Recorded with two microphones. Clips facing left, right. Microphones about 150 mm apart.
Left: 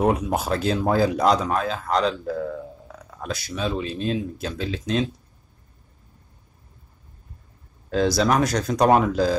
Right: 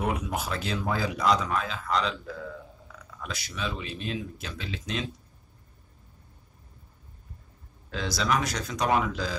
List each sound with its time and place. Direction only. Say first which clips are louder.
0.0 s speech: left 8 dB; 35° left (ahead or behind)
7.9 s speech: left 8 dB; 40° left (ahead or behind)